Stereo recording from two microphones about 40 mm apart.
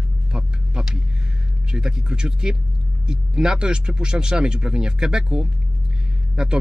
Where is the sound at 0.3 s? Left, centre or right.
Centre.